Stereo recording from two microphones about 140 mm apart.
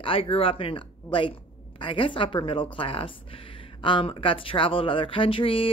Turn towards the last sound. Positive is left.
turn(degrees=40)  # may be behind; listen again after turning